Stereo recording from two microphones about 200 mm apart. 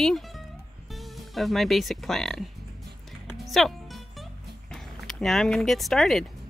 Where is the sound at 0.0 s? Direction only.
Centre (ahead or behind).